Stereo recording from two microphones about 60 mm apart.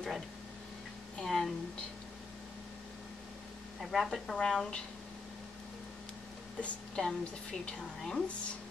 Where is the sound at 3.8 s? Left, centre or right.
Centre.